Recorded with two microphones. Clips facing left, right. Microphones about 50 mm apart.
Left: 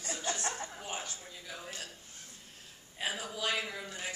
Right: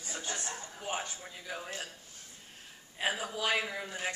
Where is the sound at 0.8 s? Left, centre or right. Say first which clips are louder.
Right 4 dB; centre.